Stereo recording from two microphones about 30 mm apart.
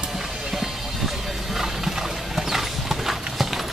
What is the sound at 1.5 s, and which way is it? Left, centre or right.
Clip-clop, centre.